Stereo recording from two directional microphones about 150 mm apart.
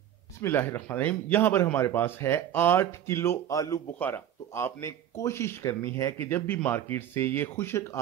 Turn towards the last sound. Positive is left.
turn(degrees=20)  # may be behind; listen again after turning